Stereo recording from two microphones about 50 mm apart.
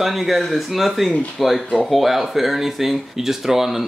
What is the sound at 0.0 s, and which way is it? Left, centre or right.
Speech, centre.